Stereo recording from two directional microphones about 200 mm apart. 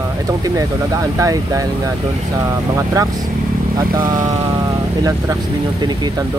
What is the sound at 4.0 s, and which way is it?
Vehicle, 20° right (ahead or behind).